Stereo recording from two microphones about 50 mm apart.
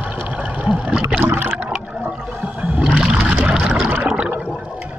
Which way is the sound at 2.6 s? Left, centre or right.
Right.